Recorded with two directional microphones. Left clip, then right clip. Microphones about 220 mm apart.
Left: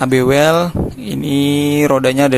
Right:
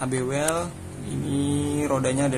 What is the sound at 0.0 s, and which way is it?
Speech, 40° left (ahead or behind).